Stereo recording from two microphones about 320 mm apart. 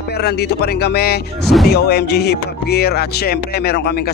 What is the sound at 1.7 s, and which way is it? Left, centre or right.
Speech, left.